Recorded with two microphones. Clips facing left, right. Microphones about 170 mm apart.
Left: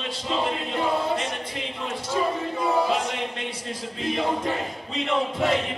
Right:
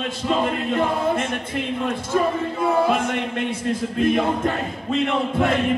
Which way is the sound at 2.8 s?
55° right (ahead or behind).